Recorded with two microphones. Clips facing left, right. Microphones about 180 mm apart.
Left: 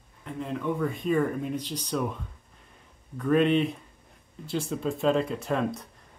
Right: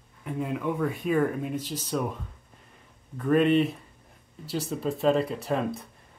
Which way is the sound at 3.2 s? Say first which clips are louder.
Right 1 dB; 5° right (ahead or behind).